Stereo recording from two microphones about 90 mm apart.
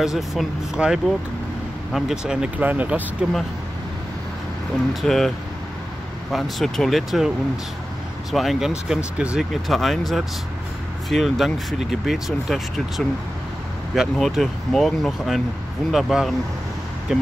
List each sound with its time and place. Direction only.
0.0 s speech: 5° right (ahead or behind)
2.6 s speech: 20° right (ahead or behind)
5.0 s speech: 5° left (ahead or behind)
6.3 s speech: centre (ahead or behind)
14.1 s speech: 5° left (ahead or behind)